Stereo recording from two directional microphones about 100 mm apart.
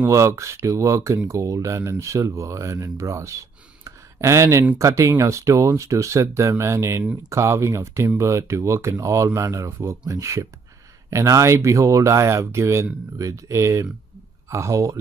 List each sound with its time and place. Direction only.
0.0 s speech: 30° right (ahead or behind)